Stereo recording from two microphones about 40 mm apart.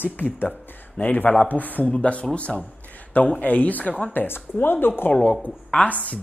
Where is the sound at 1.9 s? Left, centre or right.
Left.